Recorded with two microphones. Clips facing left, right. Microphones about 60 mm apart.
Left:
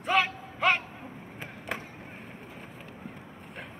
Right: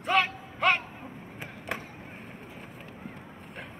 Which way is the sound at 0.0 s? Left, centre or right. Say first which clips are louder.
Even; centre.